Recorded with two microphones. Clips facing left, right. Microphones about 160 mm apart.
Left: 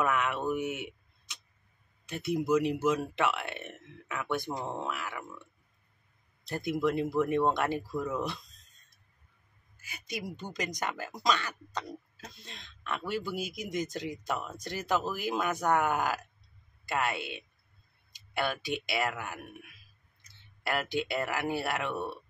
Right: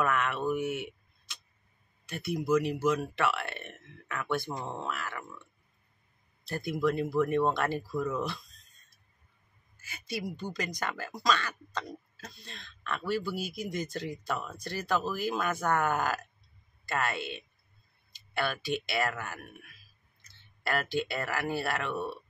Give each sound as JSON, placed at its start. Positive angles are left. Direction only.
{"t": 0.0, "sound": "speech", "side_deg": 15}
{"t": 6.4, "sound": "speech", "side_deg": 20}
{"t": 9.8, "sound": "speech", "side_deg": 15}